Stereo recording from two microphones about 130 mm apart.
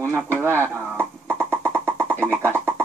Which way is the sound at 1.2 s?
20° right (ahead or behind).